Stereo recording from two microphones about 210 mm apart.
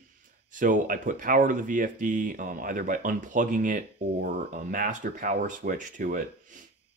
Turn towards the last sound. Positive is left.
turn(degrees=-40)  # may be behind; listen again after turning